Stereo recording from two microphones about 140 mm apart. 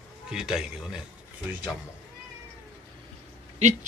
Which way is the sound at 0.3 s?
5° right (ahead or behind).